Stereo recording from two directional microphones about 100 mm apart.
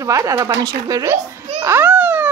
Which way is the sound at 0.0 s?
30° right (ahead or behind).